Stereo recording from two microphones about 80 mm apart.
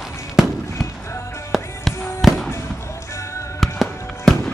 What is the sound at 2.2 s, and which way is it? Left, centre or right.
Fireworks, centre.